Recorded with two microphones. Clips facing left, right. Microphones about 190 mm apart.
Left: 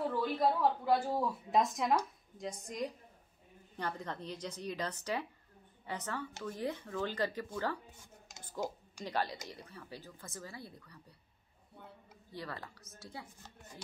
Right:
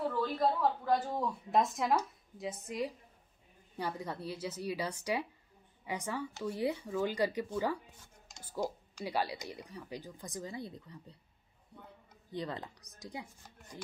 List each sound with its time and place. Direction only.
0.1 s a woman's voice: 10° left (ahead or behind); by 7.8 s 10° right (ahead or behind)
9.0 s speech: 10° right (ahead or behind)
12.3 s speech: 20° right (ahead or behind)